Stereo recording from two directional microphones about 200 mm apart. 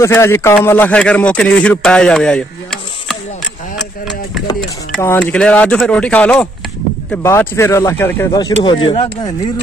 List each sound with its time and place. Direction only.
0.0 s a man's voice: 15° left (ahead or behind)
5.0 s a man's voice: 10° left (ahead or behind); by 9.3 s 25° left (ahead or behind)